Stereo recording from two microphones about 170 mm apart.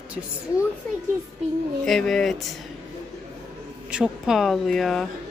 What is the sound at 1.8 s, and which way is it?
Speech, centre (ahead or behind).